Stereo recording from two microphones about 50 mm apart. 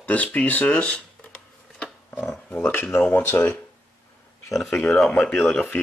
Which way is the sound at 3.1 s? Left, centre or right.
Left.